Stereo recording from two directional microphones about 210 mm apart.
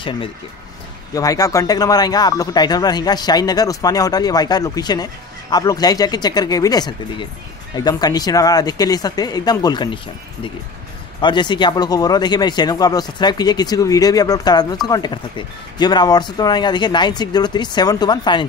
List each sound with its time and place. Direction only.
1.1 s speech: 15° left (ahead or behind)
11.1 s speech: 20° left (ahead or behind)